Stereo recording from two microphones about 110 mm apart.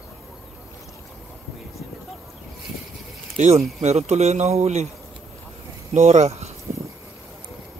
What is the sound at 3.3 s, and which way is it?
Speech, 90° right.